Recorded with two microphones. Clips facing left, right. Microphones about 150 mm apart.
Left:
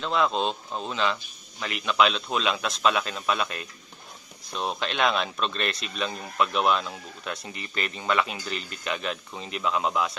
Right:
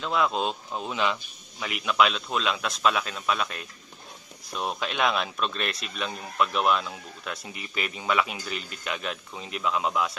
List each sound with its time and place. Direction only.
0.0 s speech: 5° right (ahead or behind)